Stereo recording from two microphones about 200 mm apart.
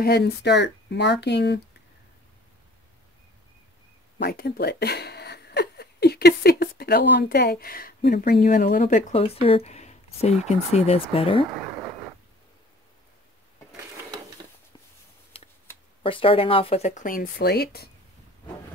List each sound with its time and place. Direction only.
0.0 s speech: 55° left (ahead or behind)
4.2 s speech: 50° left (ahead or behind); by 11.4 s 30° left (ahead or behind)
15.3 s shuffling cards: 30° left (ahead or behind)
16.0 s speech: 25° left (ahead or behind); by 17.8 s 50° left (ahead or behind)